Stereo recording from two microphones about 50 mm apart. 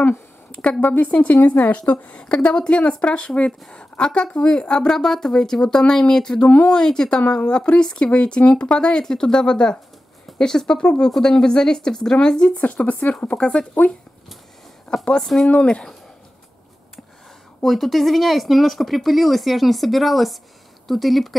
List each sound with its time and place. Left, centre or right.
0.5 s a sound: left
0.7 s speech: left
2.2 s speech: centre
6.4 s speech: left
6.7 s speech: centre
14.9 s speech: centre
15.5 s speech: centre
17.6 s speech: centre